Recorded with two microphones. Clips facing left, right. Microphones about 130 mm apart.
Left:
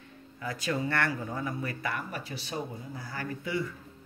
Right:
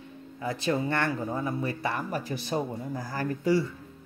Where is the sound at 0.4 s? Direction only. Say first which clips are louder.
Right 4 dB; 25° right (ahead or behind).